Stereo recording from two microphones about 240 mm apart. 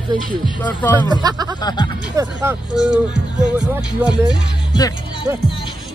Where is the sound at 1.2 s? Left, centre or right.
Centre.